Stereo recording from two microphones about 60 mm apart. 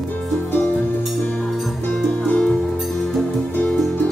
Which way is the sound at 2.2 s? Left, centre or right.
Centre.